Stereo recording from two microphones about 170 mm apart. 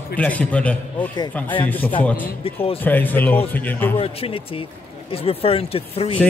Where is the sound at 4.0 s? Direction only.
35° left (ahead or behind).